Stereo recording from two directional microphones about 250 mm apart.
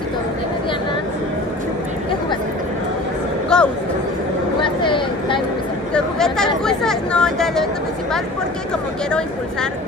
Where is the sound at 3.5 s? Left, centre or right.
Centre.